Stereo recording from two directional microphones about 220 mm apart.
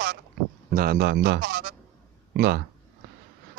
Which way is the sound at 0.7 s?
40° right (ahead or behind).